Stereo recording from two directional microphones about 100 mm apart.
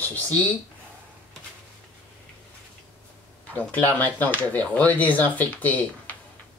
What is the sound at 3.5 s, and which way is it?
Speech, 15° left (ahead or behind).